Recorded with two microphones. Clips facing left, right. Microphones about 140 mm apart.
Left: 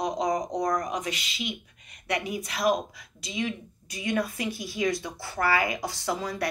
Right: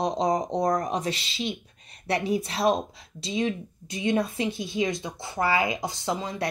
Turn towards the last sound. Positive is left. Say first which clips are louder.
# right 1 dB
turn(degrees=-20)  # may be behind; listen again after turning